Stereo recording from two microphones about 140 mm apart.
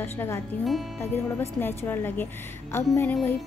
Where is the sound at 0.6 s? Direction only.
Centre (ahead or behind).